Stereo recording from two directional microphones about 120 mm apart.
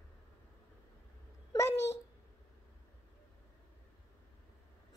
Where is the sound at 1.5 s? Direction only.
30° left (ahead or behind).